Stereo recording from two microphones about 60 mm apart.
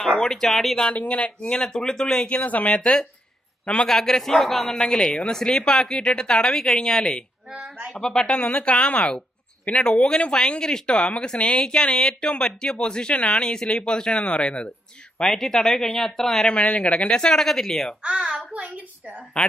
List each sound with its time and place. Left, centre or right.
0.0 s a man's voice: centre
0.8 s a man's voice: left
2.3 s speech: left
3.6 s a man's voice: centre
8.4 s a man's voice: left
15.1 s a man's voice: centre
16.5 s speech: left
17.1 s a man's voice: centre
18.0 s a child's voice: centre